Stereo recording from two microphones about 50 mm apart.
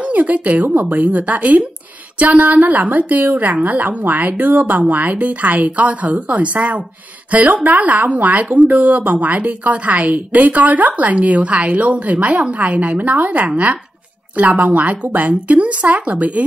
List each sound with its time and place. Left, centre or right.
0.0 s speech: right